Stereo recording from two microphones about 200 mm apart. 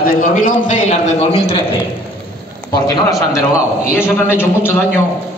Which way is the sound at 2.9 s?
15° left (ahead or behind).